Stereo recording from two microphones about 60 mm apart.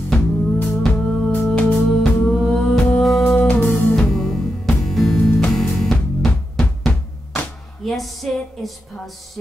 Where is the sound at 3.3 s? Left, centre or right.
Left.